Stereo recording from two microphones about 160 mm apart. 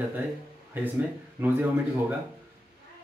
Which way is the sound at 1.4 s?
10° right (ahead or behind).